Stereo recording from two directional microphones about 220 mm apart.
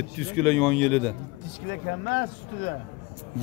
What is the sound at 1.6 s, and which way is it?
Speech, 55° left (ahead or behind).